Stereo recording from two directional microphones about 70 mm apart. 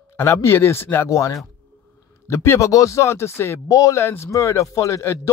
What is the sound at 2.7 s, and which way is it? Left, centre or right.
Speech, left.